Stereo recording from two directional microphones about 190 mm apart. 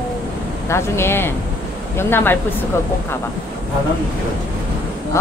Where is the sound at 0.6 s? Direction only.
15° left (ahead or behind).